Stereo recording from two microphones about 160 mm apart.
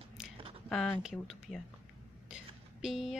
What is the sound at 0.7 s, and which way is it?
Speech, centre (ahead or behind).